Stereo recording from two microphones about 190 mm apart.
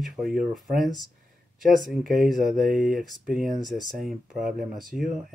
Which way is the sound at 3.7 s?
Centre (ahead or behind).